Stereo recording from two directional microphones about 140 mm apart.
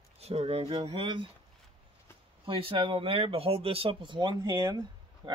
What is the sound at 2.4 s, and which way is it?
Speech, 40° right (ahead or behind).